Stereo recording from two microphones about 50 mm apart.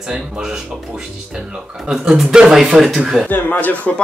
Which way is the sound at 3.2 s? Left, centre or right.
Left.